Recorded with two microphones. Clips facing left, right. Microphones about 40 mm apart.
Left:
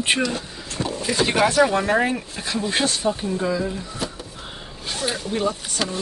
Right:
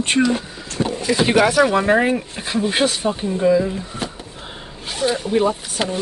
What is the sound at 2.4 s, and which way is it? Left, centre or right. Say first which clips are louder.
Speech: right 4 dB; right.